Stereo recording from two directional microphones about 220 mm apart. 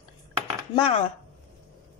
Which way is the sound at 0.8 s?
25° left (ahead or behind).